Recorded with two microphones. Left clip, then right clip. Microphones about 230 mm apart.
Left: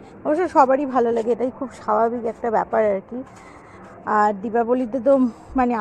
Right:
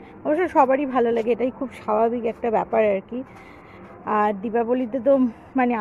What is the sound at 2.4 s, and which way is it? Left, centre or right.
Speech, right.